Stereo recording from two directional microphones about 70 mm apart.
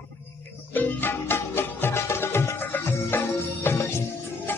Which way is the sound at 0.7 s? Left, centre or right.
Left.